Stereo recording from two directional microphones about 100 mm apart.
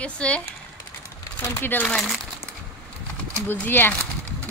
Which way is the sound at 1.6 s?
15° left (ahead or behind).